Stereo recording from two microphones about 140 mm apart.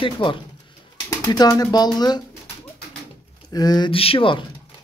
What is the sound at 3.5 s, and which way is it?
Speech, 25° left (ahead or behind).